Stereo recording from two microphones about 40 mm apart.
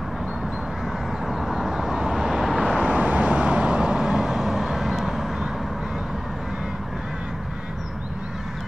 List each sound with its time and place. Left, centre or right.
1.2 s vehicle: centre
2.8 s vehicle: right
3.9 s vehicle: centre